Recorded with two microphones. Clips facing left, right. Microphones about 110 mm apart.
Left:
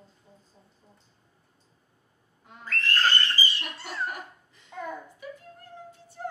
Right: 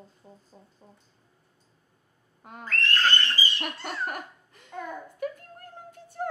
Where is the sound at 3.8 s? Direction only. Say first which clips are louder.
Left 2 dB; 55° right (ahead or behind).